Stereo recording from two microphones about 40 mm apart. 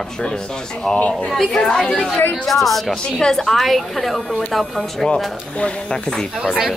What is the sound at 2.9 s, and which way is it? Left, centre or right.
A woman's voice, centre.